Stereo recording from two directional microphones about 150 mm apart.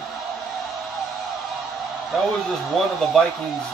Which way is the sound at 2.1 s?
Centre (ahead or behind).